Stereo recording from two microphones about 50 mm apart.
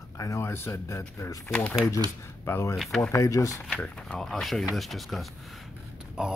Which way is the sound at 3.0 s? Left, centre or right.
Left.